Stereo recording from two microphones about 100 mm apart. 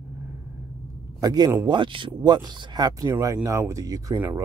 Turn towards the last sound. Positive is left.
turn(degrees=-35)  # may be behind; listen again after turning